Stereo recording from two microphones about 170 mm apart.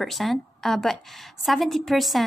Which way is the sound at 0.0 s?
Centre (ahead or behind).